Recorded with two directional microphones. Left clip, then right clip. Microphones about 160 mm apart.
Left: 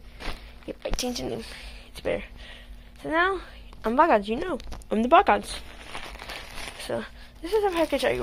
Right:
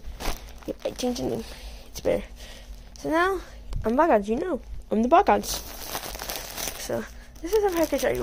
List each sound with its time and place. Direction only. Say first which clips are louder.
0.7 s speech: right 2 dB; 25° right (ahead or behind)
3.3 s a woman's voice: right 1 dB; 15° right (ahead or behind)
6.8 s speech: left 2 dB; 5° right (ahead or behind)